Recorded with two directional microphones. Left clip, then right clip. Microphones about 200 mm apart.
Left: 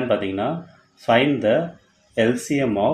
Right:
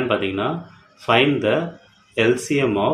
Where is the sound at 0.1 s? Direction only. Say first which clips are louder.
Even; 20° left (ahead or behind).